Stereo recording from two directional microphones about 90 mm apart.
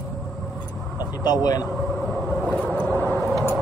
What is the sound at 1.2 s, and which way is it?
Speech, 45° left (ahead or behind).